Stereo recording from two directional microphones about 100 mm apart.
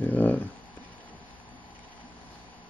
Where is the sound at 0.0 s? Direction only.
15° left (ahead or behind).